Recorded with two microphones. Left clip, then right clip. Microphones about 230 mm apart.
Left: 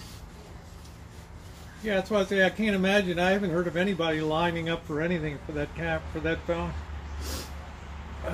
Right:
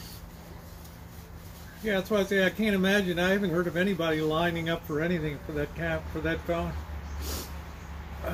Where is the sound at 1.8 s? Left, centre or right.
Centre.